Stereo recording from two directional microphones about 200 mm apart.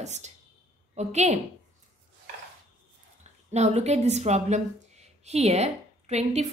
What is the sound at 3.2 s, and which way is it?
A woman's voice, 35° right (ahead or behind).